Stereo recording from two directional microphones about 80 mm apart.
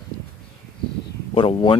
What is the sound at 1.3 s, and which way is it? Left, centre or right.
Speech, left.